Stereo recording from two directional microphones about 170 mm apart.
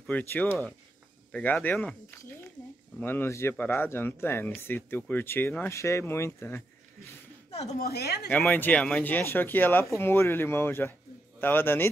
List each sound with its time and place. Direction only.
0.0 s speech: 10° left (ahead or behind)
7.5 s a woman's voice: 35° left (ahead or behind)
7.8 s speech: 70° left (ahead or behind)
8.3 s speech: 10° left (ahead or behind)